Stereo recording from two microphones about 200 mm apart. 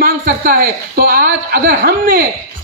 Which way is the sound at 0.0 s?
45° right (ahead or behind).